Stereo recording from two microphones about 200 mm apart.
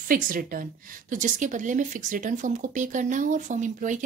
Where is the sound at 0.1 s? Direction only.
45° right (ahead or behind).